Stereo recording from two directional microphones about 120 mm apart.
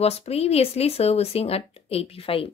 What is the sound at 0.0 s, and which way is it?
Speech, 60° left (ahead or behind).